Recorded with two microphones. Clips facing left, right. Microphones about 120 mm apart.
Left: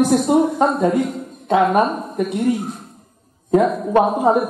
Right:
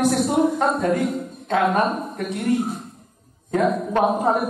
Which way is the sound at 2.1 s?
10° left (ahead or behind).